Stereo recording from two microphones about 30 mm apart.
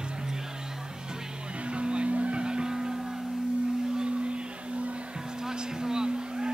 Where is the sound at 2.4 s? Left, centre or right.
Right.